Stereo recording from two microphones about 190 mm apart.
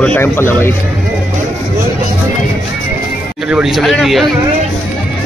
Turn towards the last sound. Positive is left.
turn(degrees=0)  # may be behind; listen again after turning